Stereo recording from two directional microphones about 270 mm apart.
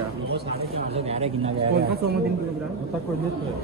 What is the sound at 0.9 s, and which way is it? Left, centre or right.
Speech, right.